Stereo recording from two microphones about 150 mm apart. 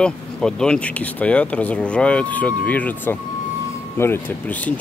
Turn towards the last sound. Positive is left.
turn(degrees=10)  # may be behind; listen again after turning